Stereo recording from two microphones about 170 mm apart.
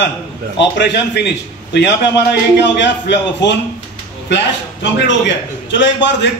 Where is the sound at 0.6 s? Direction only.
90° left.